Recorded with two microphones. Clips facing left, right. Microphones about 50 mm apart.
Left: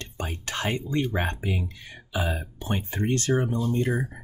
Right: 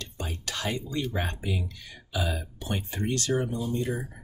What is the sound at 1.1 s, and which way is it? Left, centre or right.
Speech, left.